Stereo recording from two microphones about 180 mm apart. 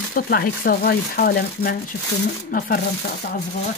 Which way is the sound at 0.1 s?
55° left (ahead or behind).